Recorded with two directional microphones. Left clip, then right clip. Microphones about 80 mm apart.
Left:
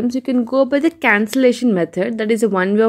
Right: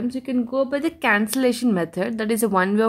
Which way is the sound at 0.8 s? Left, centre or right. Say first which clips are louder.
Left 5 dB; left.